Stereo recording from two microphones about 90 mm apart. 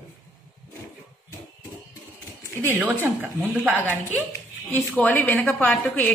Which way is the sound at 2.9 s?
25° right (ahead or behind).